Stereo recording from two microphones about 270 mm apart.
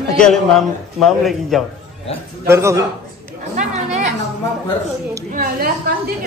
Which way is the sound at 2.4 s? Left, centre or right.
Centre.